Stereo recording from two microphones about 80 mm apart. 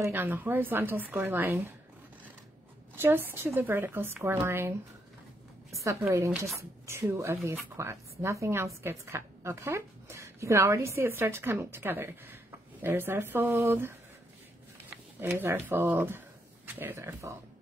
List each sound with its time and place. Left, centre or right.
0.1 s a woman's voice: right
3.0 s a woman's voice: right
6.1 s a woman's voice: right